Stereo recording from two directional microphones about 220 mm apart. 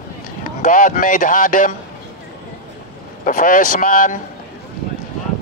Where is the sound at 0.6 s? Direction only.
35° left (ahead or behind).